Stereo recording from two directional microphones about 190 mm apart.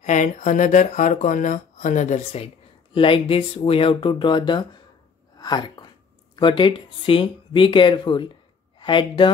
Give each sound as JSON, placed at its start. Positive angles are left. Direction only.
{"t": 0.0, "sound": "speech", "side_deg": 40}